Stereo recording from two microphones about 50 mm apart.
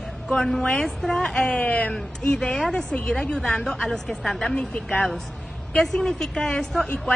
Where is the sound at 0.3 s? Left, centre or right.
Centre.